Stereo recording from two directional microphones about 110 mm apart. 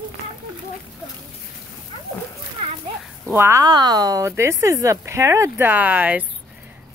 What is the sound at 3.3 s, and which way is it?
Speech, 25° right (ahead or behind).